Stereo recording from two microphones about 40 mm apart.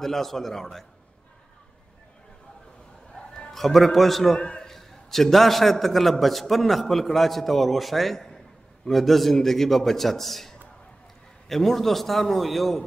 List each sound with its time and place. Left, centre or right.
0.0 s a man's voice: centre
3.1 s music: centre
3.5 s a man's voice: centre
4.4 s a man's voice: left
4.6 s a man's voice: centre